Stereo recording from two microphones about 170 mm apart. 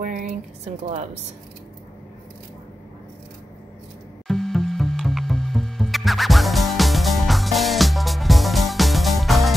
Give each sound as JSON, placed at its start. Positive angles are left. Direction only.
{"t": 0.0, "sound": "speech", "side_deg": -50}
{"t": 4.3, "sound": "music", "side_deg": 0}